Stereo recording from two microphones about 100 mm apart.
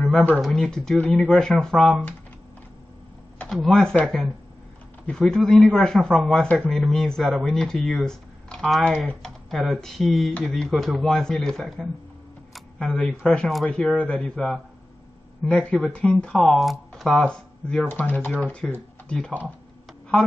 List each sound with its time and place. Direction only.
0.4 s speech: 5° left (ahead or behind)
3.4 s speech: centre (ahead or behind)
12.5 s camera: 5° left (ahead or behind)
13.5 s speech: centre (ahead or behind)
13.7 s speech: 10° left (ahead or behind)